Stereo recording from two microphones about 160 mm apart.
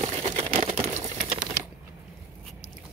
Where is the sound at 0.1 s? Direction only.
40° right (ahead or behind).